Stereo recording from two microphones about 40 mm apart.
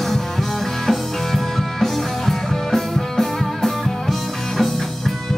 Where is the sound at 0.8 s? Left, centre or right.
Centre.